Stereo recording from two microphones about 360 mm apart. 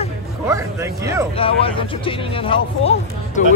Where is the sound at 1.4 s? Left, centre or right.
Centre.